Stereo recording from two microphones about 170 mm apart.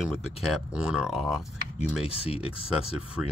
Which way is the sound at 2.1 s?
35° left (ahead or behind).